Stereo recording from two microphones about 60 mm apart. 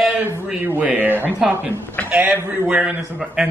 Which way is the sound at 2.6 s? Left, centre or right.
Centre.